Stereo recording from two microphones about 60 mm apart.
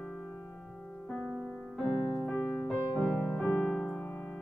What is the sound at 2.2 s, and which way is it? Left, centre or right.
Piano, centre.